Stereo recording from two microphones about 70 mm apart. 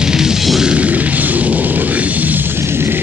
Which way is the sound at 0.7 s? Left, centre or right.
Right.